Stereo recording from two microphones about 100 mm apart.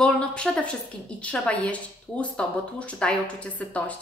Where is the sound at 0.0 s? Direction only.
10° left (ahead or behind).